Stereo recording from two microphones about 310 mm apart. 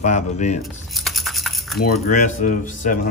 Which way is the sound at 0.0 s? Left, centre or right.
Left.